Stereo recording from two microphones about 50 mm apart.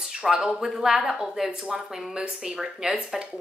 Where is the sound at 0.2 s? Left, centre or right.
Centre.